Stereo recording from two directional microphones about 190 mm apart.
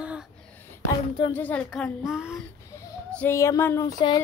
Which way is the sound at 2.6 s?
10° left (ahead or behind).